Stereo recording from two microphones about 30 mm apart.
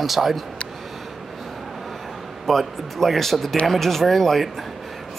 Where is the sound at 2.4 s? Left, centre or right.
Centre.